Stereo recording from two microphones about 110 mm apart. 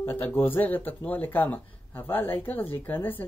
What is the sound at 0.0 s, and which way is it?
Speech, 20° left (ahead or behind).